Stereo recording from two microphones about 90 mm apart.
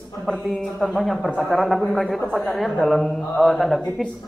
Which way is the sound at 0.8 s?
Centre (ahead or behind).